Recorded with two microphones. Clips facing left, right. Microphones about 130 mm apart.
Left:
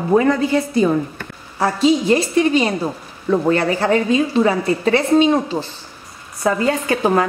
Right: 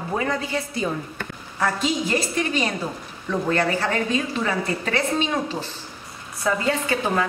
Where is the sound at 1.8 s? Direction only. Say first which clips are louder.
Left 13 dB; 35° left (ahead or behind).